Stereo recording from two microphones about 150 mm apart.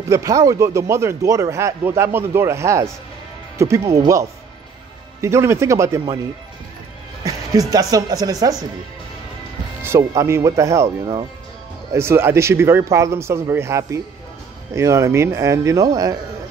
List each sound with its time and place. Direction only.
0.1 s speech: 20° right (ahead or behind)
7.2 s speech: 25° right (ahead or behind)
9.8 s speech: 20° right (ahead or behind)